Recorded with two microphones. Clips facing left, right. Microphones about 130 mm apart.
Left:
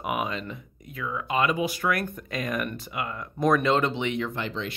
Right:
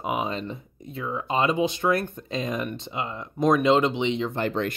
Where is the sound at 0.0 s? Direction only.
25° right (ahead or behind).